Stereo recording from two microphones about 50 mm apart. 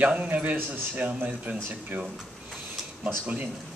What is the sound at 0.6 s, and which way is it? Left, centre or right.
Speech, right.